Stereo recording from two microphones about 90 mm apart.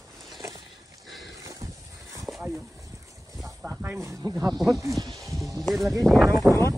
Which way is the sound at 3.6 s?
15° right (ahead or behind).